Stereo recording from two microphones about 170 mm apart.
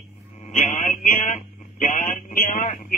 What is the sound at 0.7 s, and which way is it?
Speech, 50° left (ahead or behind).